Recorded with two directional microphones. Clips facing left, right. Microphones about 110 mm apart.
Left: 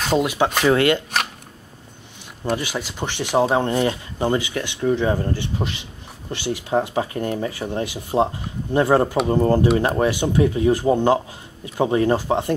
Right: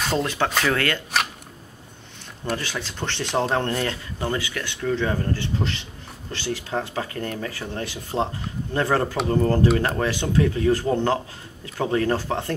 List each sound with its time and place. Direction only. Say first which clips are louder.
0.2 s speech: left 4 dB; 10° left (ahead or behind)
2.5 s speech: left 4 dB; 15° left (ahead or behind)